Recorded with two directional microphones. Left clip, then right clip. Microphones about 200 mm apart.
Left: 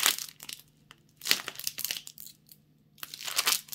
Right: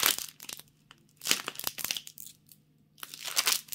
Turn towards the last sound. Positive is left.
turn(degrees=-10)  # may be behind; listen again after turning